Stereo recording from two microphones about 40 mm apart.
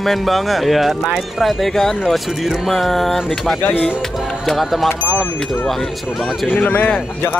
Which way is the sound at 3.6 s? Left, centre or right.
Left.